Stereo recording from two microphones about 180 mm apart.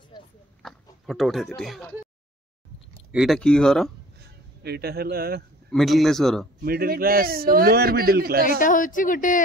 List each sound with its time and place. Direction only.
0.6 s a sound: centre (ahead or behind)
1.6 s speech: centre (ahead or behind)
3.1 s speech: centre (ahead or behind)
4.2 s speech: 65° right (ahead or behind)
5.7 s speech: centre (ahead or behind)
6.6 s a man's voice: 55° right (ahead or behind)
8.5 s a woman's voice: 45° left (ahead or behind)